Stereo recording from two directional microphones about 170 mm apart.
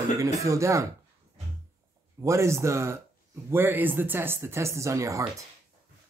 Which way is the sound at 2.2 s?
15° right (ahead or behind).